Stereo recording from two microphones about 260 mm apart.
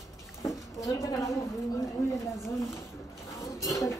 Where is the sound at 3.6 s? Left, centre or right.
Centre.